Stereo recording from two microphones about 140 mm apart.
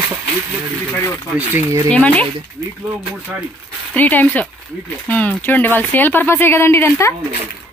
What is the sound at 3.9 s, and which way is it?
Speech, 10° left (ahead or behind).